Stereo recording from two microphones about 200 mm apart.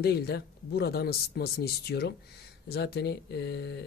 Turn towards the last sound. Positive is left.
turn(degrees=55)  # may be behind; listen again after turning